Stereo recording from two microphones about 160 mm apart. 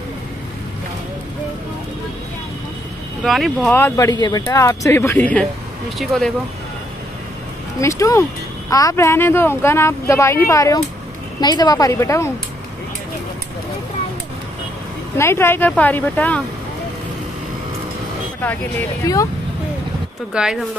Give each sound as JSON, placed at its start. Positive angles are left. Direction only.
{"t": 3.3, "sound": "speech", "side_deg": 0}
{"t": 3.7, "sound": "speech", "side_deg": 15}
{"t": 7.8, "sound": "a woman's voice", "side_deg": 20}
{"t": 15.1, "sound": "speech", "side_deg": 15}
{"t": 19.1, "sound": "a woman's voice", "side_deg": 20}
{"t": 20.4, "sound": "speech", "side_deg": -5}